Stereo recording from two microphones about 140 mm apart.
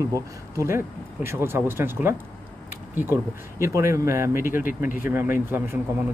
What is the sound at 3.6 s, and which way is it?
Speech, 20° right (ahead or behind).